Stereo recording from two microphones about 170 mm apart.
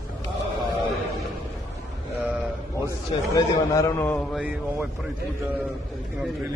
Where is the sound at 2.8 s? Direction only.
20° left (ahead or behind).